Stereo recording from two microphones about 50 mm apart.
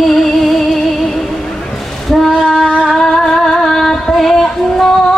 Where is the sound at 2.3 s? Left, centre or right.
Centre.